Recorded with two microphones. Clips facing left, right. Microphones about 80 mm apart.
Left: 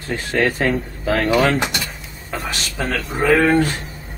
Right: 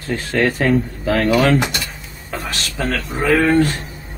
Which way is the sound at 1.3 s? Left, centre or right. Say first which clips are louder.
Right 2 dB; centre.